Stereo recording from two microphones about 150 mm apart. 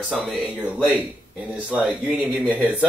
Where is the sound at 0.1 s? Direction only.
5° right (ahead or behind).